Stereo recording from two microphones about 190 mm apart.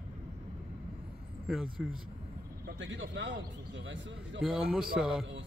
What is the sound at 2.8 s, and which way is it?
A man's voice, 70° right (ahead or behind).